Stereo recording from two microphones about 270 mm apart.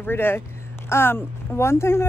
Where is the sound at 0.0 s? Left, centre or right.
Centre.